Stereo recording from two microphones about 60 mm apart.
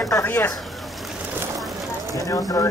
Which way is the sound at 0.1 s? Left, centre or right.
Left.